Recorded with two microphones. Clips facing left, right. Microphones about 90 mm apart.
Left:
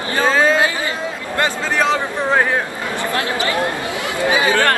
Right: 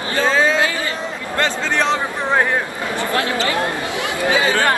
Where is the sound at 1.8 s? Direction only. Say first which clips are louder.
Left 4 dB; centre (ahead or behind).